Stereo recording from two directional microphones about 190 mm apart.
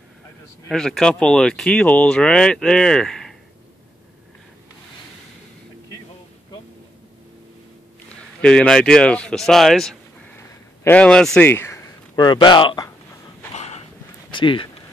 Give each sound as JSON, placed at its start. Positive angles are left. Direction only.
{"t": 0.7, "sound": "speech", "side_deg": 5}
{"t": 8.4, "sound": "a man's voice", "side_deg": 5}
{"t": 13.5, "sound": "a sound", "side_deg": 35}
{"t": 14.3, "sound": "speech", "side_deg": 25}